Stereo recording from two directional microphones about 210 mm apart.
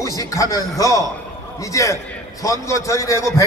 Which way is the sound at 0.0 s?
15° left (ahead or behind).